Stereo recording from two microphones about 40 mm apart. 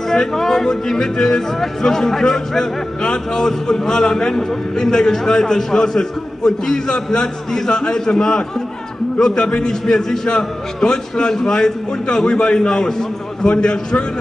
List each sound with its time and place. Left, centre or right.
0.1 s speech: centre
13.5 s a man's voice: left